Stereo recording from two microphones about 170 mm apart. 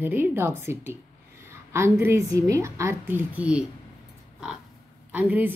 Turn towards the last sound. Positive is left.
turn(degrees=-10)  # may be behind; listen again after turning